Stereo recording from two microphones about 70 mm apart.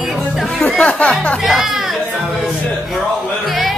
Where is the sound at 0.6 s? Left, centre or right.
Centre.